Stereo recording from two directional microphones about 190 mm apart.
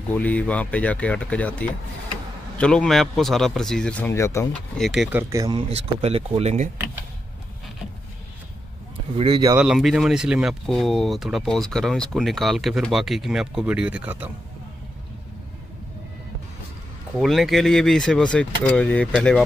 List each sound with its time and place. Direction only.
0.1 s speech: 10° left (ahead or behind)
4.7 s speech: centre (ahead or behind)
5.3 s speech: 20° right (ahead or behind)
5.8 s speech: 35° right (ahead or behind)
9.1 s speech: 30° right (ahead or behind)
9.4 s speech: 15° right (ahead or behind)
9.7 s speech: centre (ahead or behind)
17.2 s speech: centre (ahead or behind)